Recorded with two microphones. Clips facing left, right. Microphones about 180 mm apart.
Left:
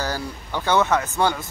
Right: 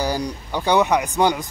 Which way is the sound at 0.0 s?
15° right (ahead or behind).